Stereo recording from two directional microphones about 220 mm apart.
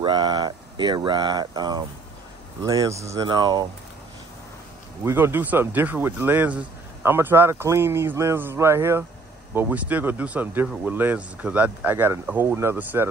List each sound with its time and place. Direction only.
0.0 s speech: 20° right (ahead or behind)
5.0 s speech: 10° right (ahead or behind)